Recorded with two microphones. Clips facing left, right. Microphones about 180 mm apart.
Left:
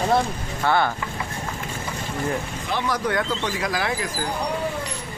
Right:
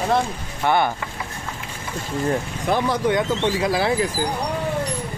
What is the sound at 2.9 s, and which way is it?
Speech, 20° right (ahead or behind).